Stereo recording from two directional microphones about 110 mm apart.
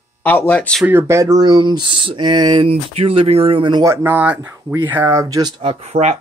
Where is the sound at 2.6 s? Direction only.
70° right (ahead or behind); by 3.9 s 45° right (ahead or behind).